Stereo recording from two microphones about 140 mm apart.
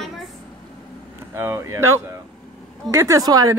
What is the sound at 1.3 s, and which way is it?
Speech, 15° right (ahead or behind).